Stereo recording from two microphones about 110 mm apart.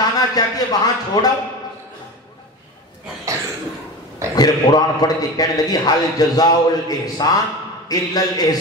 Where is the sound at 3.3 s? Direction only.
30° right (ahead or behind).